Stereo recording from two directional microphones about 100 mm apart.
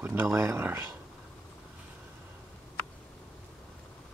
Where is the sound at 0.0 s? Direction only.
25° right (ahead or behind).